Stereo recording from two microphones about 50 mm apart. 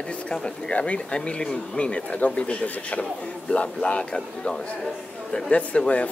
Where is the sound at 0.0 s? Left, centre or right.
Left.